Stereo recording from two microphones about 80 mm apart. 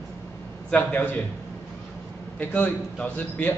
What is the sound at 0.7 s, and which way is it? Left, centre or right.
Speech, left.